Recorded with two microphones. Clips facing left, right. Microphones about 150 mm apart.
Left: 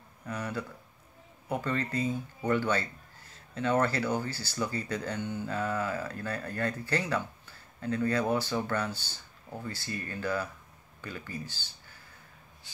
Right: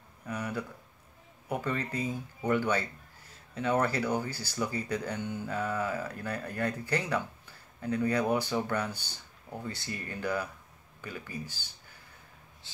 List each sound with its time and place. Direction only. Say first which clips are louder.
0.3 s speech: even; 10° right (ahead or behind)